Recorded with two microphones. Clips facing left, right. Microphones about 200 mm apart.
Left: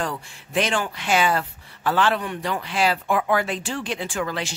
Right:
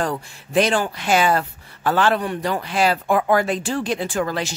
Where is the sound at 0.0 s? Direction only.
40° right (ahead or behind).